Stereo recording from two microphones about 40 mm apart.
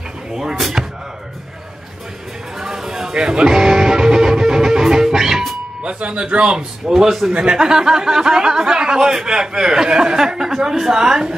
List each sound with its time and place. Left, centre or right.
0.3 s speech: centre
2.6 s a sound: centre
3.2 s music: centre
5.9 s speech: right
6.9 s speech: centre